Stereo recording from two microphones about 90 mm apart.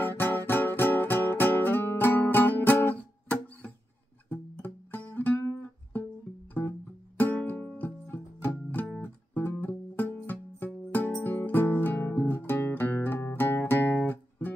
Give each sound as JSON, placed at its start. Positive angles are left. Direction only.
{"t": 0.0, "sound": "music", "side_deg": 25}
{"t": 7.2, "sound": "music", "side_deg": 20}